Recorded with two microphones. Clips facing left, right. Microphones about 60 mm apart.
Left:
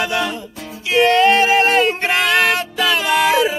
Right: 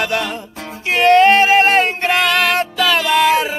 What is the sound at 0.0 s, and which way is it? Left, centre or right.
Music, right.